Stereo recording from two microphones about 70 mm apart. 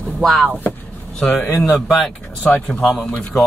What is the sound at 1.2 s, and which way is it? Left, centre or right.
Speech, left.